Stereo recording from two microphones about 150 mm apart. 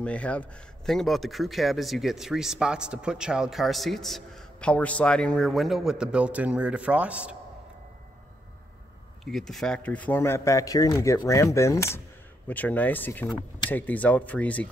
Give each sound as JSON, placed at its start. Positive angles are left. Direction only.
{"t": 0.0, "sound": "speech", "side_deg": 10}
{"t": 9.2, "sound": "speech", "side_deg": 0}